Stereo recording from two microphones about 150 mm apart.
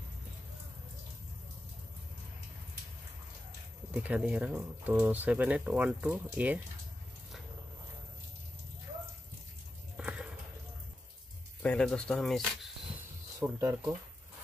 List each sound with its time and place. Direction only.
3.9 s speech: 10° right (ahead or behind)
9.9 s a sound: 5° right (ahead or behind)
11.6 s speech: 5° left (ahead or behind)
13.4 s speech: 20° right (ahead or behind)